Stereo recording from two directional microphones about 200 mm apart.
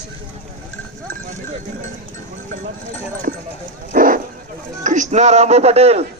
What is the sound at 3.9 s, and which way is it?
Bow-wow, 45° right (ahead or behind).